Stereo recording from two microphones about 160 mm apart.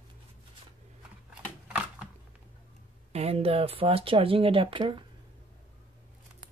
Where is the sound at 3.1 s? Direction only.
40° right (ahead or behind).